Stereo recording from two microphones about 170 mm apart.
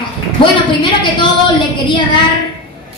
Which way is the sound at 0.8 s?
30° left (ahead or behind).